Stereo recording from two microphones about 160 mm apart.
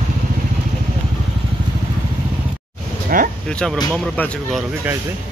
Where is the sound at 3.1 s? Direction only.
60° right (ahead or behind).